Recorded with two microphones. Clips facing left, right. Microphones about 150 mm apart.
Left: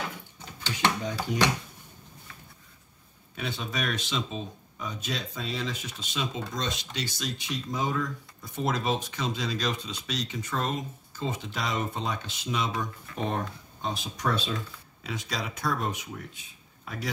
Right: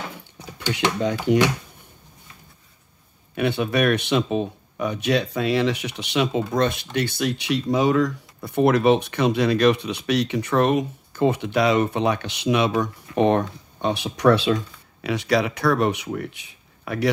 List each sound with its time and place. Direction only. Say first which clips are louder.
3.3 s speech: right 12 dB; 65° right (ahead or behind)